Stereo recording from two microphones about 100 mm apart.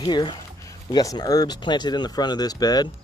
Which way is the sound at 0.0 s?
50° left (ahead or behind).